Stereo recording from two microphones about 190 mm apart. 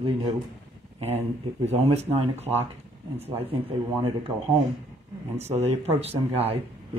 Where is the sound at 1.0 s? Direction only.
35° right (ahead or behind).